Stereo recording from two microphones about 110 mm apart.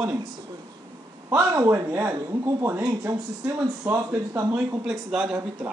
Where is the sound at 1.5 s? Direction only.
25° right (ahead or behind).